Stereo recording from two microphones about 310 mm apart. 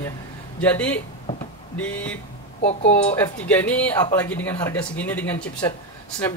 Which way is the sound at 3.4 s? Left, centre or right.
Centre.